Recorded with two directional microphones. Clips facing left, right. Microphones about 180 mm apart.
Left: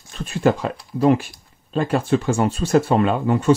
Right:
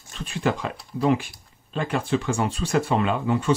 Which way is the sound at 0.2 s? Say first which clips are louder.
Left 6 dB; 45° left (ahead or behind).